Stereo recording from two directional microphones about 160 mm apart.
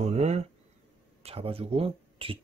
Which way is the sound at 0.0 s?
40° right (ahead or behind).